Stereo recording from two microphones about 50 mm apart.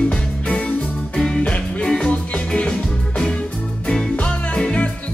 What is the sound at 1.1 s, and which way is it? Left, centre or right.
Music, centre.